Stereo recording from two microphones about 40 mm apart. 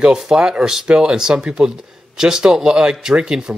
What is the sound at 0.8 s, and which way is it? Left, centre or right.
Speech, right.